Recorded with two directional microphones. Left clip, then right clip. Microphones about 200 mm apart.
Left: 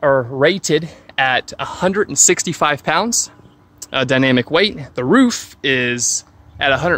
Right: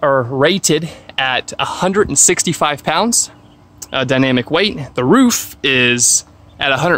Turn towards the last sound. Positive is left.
turn(degrees=0)  # may be behind; listen again after turning